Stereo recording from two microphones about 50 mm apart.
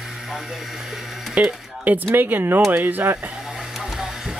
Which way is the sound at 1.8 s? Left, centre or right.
Right.